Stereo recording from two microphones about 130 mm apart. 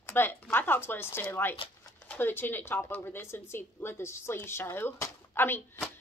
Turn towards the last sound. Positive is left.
turn(degrees=15)  # may be behind; listen again after turning